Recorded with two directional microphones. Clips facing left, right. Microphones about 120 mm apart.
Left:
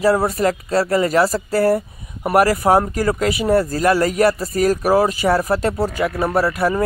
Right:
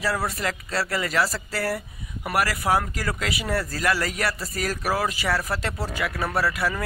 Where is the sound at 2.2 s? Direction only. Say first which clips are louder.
Left 10 dB; 35° left (ahead or behind).